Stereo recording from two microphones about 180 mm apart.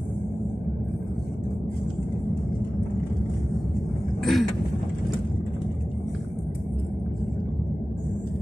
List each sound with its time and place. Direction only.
4.2 s vehicle: centre (ahead or behind)